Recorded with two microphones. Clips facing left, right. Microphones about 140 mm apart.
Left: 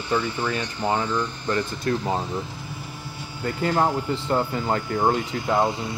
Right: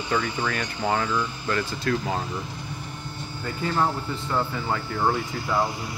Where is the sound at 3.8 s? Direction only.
35° left (ahead or behind).